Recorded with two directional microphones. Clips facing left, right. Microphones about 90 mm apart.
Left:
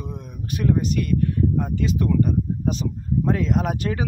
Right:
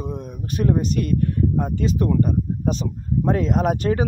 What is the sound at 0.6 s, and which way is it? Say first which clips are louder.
Speech: right 1 dB; 35° right (ahead or behind).